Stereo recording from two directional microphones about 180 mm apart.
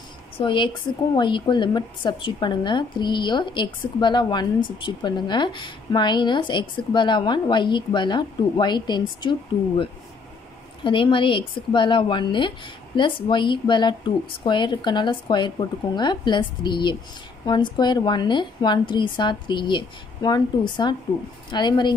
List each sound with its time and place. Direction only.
0.4 s a woman's voice: 25° left (ahead or behind)